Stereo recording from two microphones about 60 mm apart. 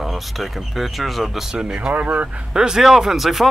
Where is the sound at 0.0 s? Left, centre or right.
Centre.